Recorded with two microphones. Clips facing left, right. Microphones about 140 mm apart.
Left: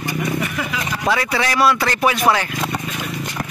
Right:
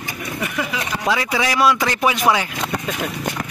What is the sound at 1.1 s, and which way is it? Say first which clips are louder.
Speech: even; 10° right (ahead or behind).